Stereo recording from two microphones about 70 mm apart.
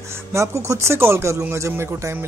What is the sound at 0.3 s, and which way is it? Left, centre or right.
Speech, right.